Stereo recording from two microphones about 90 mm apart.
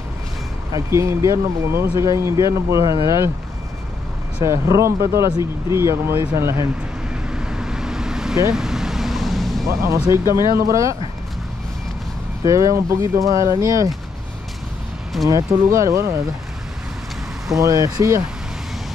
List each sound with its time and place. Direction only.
0.7 s speech: 35° right (ahead or behind)
4.4 s speech: 35° right (ahead or behind)
7.2 s vehicle: 10° right (ahead or behind)
9.7 s speech: 35° right (ahead or behind)
12.4 s speech: 35° right (ahead or behind)
15.2 s speech: 40° right (ahead or behind)
17.6 s speech: 40° right (ahead or behind)